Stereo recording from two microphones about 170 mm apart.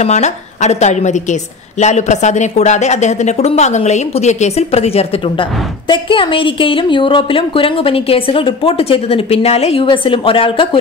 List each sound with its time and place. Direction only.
0.0 s speech: 40° left (ahead or behind)